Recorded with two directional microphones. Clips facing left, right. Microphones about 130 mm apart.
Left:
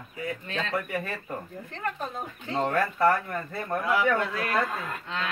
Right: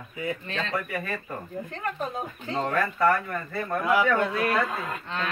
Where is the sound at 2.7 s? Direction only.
25° left (ahead or behind).